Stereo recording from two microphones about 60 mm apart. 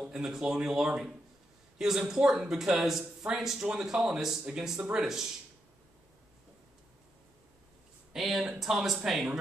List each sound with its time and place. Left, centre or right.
0.0 s speech: centre
8.1 s speech: centre